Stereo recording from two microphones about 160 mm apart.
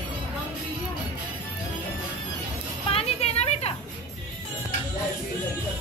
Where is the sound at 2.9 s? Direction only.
35° left (ahead or behind).